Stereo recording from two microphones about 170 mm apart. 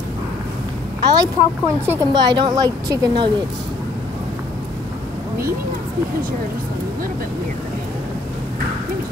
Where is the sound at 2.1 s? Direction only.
25° right (ahead or behind).